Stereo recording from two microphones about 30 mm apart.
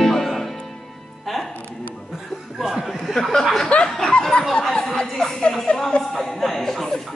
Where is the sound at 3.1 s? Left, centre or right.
Right.